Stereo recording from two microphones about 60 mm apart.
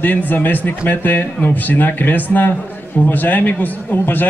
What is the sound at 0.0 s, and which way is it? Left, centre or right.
A man's voice, left.